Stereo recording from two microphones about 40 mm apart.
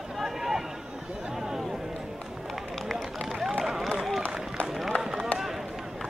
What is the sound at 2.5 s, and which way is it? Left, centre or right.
Run, centre.